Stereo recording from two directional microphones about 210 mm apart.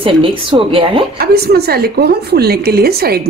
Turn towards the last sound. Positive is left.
turn(degrees=-50)  # may be behind; listen again after turning